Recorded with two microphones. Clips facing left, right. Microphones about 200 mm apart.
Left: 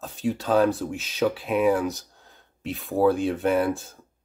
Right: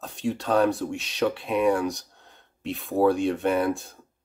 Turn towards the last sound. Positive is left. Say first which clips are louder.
# left 1 dB
turn(degrees=0)  # may be behind; listen again after turning